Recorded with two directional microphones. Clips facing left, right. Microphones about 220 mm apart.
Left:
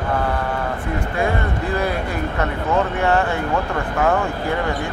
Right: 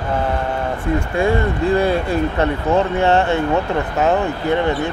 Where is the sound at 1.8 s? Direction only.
30° right (ahead or behind).